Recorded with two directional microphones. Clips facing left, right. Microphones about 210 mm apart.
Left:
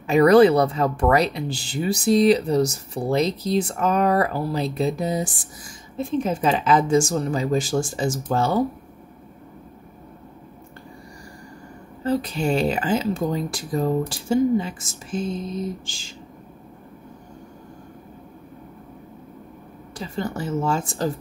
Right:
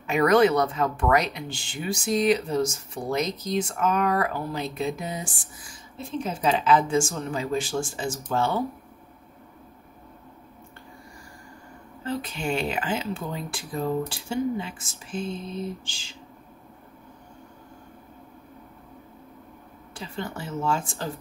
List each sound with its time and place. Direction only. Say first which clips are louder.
0.0 s speech: left 6 dB; 35° left (ahead or behind)
12.0 s speech: left 7 dB; 40° left (ahead or behind)
19.9 s speech: left 6 dB; 40° left (ahead or behind)